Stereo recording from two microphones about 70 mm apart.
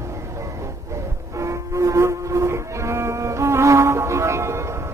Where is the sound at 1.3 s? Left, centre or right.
Right.